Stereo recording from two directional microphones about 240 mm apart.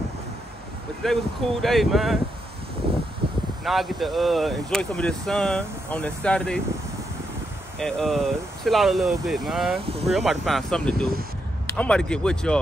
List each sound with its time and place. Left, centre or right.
1.0 s speech: centre
2.8 s a sound: right
3.6 s speech: centre
7.8 s speech: centre